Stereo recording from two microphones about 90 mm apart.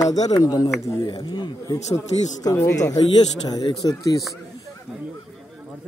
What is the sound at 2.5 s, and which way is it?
Speech, 35° left (ahead or behind).